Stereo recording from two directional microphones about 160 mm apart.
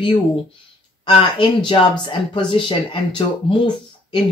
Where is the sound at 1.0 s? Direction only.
30° left (ahead or behind).